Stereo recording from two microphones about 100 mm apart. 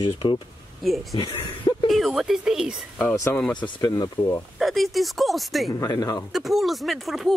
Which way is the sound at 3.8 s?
40° left (ahead or behind).